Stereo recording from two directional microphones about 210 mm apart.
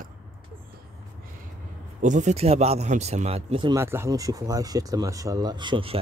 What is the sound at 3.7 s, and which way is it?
Speech, 10° right (ahead or behind).